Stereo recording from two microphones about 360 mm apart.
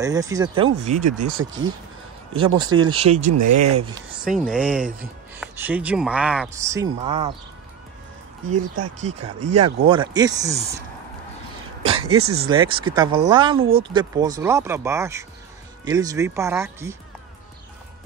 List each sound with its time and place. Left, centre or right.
0.0 s speech: centre
0.9 s speech: right
2.3 s speech: centre
3.3 s speech: right
3.8 s speech: centre
9.6 s speech: centre
11.8 s a sound: centre
12.2 s speech: right
12.4 s speech: centre
13.6 s speech: right
13.8 s speech: centre